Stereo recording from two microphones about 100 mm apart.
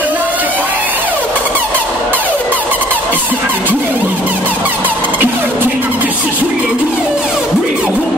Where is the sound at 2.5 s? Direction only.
15° right (ahead or behind).